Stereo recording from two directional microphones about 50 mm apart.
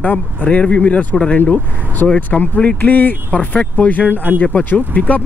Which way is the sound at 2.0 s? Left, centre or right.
Left.